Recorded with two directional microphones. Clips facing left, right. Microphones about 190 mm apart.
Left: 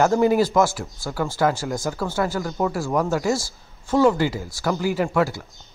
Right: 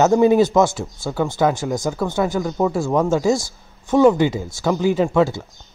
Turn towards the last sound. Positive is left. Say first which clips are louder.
# right 4 dB
turn(degrees=-20)  # may be behind; listen again after turning